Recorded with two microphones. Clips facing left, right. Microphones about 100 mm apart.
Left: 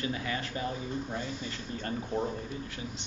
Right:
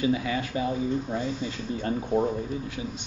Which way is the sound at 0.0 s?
15° right (ahead or behind).